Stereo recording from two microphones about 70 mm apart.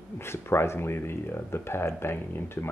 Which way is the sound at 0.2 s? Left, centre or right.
Left.